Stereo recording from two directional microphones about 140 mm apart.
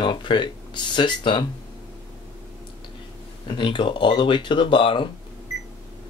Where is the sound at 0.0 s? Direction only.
35° left (ahead or behind).